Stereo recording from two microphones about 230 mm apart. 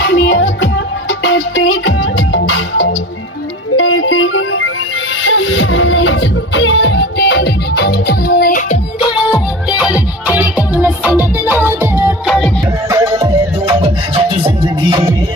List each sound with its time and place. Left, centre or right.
0.0 s music: left
9.0 s music: centre
9.8 s music: centre